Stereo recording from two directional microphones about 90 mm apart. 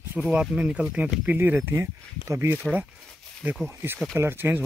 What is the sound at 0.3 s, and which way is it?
Speech, 15° right (ahead or behind).